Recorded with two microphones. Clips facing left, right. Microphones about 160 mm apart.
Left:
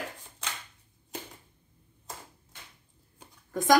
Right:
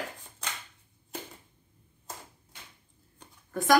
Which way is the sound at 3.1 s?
20° left (ahead or behind).